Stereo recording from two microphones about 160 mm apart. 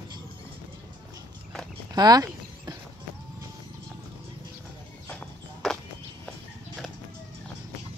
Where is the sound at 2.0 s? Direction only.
25° right (ahead or behind).